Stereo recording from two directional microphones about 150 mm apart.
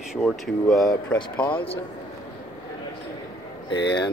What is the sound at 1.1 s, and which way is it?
Speech, 30° left (ahead or behind).